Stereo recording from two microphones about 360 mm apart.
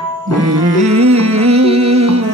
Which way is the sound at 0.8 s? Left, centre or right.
Centre.